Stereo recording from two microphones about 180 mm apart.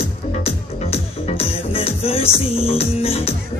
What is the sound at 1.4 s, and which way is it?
Music, 30° left (ahead or behind).